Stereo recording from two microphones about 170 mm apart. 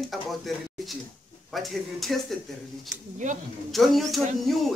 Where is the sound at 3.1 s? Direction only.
45° right (ahead or behind).